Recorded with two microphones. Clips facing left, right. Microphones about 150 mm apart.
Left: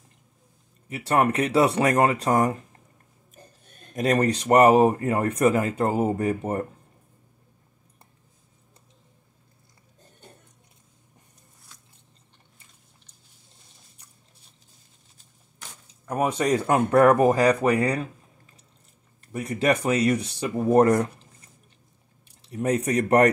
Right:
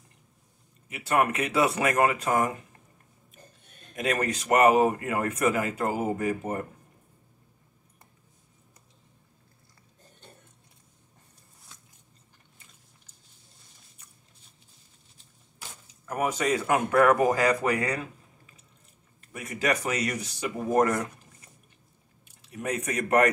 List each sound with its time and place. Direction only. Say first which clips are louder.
0.8 s speech: left 3 dB; 35° left (ahead or behind)
3.9 s speech: left 6 dB; 35° left (ahead or behind)
16.1 s speech: left 4 dB; 30° left (ahead or behind)
19.2 s speech: left 5 dB; 35° left (ahead or behind)
22.3 s speech: left 7 dB; 35° left (ahead or behind)